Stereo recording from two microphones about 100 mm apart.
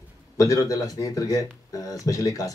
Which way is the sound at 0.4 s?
35° left (ahead or behind).